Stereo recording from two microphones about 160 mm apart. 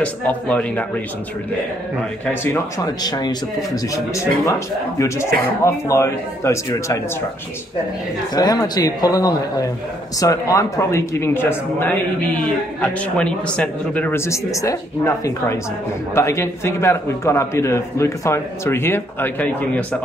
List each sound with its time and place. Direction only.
0.0 s a man's voice: 10° left (ahead or behind)
2.2 s a man's voice: 15° left (ahead or behind)
8.4 s a man's voice: 25° left (ahead or behind); by 20.0 s 10° left (ahead or behind)